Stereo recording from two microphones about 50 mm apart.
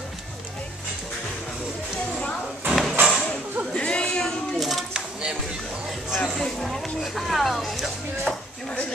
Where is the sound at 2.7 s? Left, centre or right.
Centre.